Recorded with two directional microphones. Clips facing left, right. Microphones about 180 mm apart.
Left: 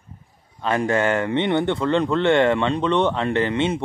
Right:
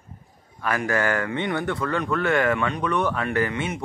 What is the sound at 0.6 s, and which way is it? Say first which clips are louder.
A man's voice: left 4 dB; 25° left (ahead or behind).